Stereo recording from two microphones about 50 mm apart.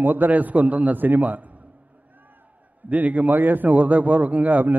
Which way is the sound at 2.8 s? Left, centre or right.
Right.